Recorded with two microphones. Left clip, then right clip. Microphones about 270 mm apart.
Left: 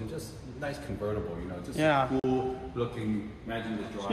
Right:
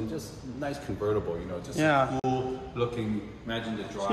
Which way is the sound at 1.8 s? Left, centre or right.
Centre.